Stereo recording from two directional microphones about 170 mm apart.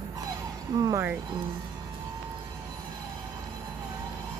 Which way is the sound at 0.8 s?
20° right (ahead or behind).